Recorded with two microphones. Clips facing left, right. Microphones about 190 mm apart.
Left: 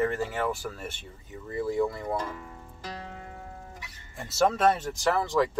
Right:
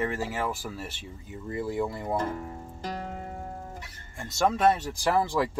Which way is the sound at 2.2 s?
50° right (ahead or behind).